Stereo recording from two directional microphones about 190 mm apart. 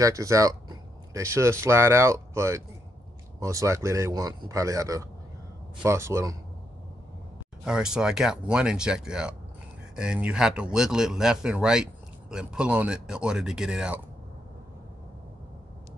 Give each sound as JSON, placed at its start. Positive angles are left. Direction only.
{"t": 0.0, "sound": "speech", "side_deg": -15}
{"t": 7.6, "sound": "speech", "side_deg": -5}